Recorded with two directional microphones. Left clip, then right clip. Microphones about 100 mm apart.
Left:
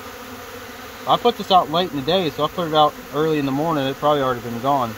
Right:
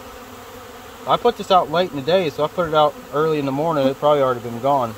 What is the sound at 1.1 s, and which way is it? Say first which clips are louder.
Speech: even; 35° right (ahead or behind).